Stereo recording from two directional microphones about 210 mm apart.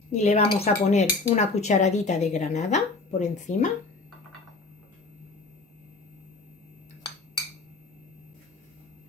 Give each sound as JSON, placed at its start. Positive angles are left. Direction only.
{"t": 0.1, "sound": "speech", "side_deg": 30}